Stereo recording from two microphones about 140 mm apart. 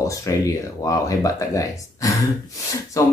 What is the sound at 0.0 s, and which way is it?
Speech, 20° left (ahead or behind).